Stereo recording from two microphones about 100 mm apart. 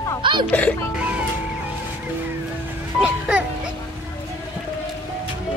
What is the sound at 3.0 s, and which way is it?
Music, 10° right (ahead or behind).